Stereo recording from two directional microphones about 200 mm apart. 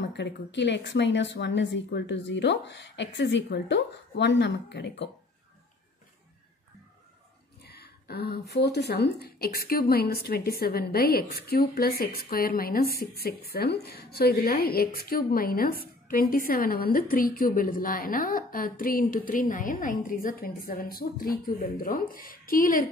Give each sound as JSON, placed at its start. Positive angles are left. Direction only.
{"t": 0.0, "sound": "a woman's voice", "side_deg": 60}
{"t": 7.6, "sound": "a woman's voice", "side_deg": 55}